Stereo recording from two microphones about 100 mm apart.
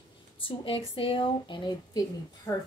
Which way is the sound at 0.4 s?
65° left (ahead or behind).